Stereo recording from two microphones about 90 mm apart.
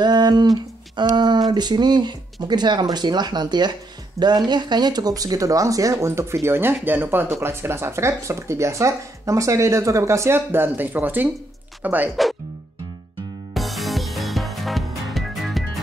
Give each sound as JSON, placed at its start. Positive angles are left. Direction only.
{"t": 0.0, "sound": "speech", "side_deg": -55}
{"t": 0.9, "sound": "a sound", "side_deg": -55}
{"t": 1.5, "sound": "speech", "side_deg": -55}
{"t": 13.6, "sound": "music", "side_deg": 0}